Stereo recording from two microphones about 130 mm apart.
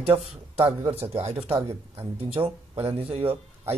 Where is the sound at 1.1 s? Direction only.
55° right (ahead or behind).